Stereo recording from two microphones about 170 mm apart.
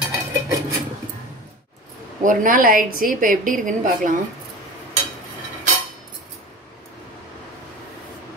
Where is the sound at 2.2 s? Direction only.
50° right (ahead or behind).